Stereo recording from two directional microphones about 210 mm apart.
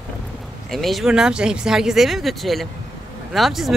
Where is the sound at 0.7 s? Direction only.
Centre (ahead or behind).